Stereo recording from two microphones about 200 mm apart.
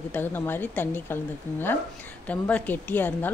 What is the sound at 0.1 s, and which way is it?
A woman's voice, 10° left (ahead or behind).